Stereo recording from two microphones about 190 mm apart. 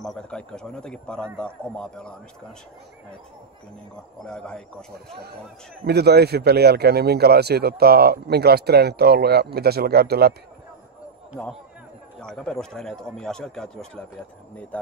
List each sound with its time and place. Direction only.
0.0 s speech: 5° left (ahead or behind)
4.2 s speech: 5° left (ahead or behind)
5.9 s speech: 60° right (ahead or behind)
12.2 s speech: 5° left (ahead or behind)